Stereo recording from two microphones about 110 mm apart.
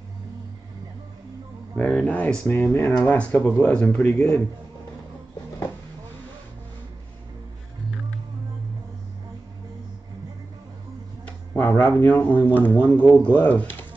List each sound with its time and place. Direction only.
1.8 s speech: centre (ahead or behind)
2.0 s speech: 15° left (ahead or behind)
3.3 s speech: 25° left (ahead or behind)
3.6 s speech: 10° left (ahead or behind)
11.2 s speech: 20° left (ahead or behind)